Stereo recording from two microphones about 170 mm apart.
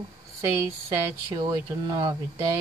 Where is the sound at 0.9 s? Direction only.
25° right (ahead or behind).